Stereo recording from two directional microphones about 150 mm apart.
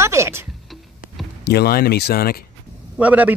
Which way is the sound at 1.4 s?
90° left.